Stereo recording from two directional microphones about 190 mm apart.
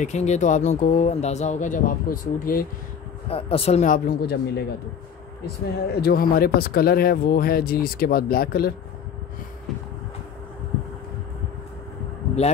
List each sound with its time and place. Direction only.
0.0 s speech: 35° left (ahead or behind)
3.3 s speech: 30° left (ahead or behind); by 4.6 s 55° left (ahead or behind)
5.9 s speech: 55° left (ahead or behind)